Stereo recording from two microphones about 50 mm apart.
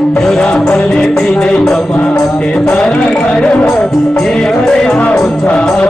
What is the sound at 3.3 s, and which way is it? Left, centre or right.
Speech, left.